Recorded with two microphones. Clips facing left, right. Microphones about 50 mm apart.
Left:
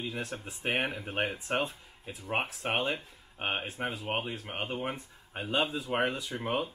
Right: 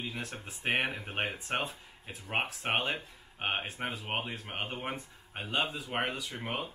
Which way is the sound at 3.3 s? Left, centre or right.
Centre.